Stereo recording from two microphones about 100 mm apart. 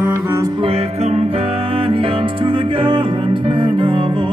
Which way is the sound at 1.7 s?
70° right (ahead or behind).